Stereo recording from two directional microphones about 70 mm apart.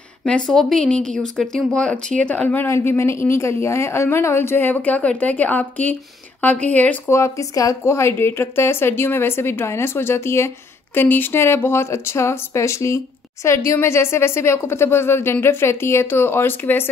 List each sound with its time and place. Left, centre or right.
0.2 s speech: centre
2.7 s speech: left
7.1 s speech: left
7.8 s speech: left
11.0 s speech: left